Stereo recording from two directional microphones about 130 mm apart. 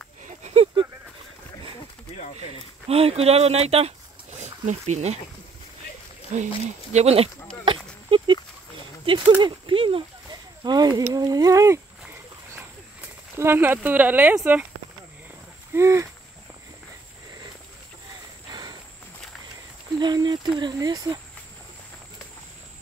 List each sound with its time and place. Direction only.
0.8 s a sound: 40° right (ahead or behind)
2.9 s speech: 50° right (ahead or behind)
6.3 s speech: 60° right (ahead or behind)
7.6 s a sound: 40° right (ahead or behind)
9.4 s speech: 40° right (ahead or behind); by 11.8 s 20° right (ahead or behind)
13.4 s speech: 15° right (ahead or behind)
15.7 s speech: 20° right (ahead or behind)
18.5 s a sound: 35° right (ahead or behind)
20.0 s speech: 35° right (ahead or behind)